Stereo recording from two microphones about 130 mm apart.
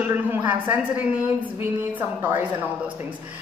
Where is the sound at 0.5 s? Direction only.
15° right (ahead or behind).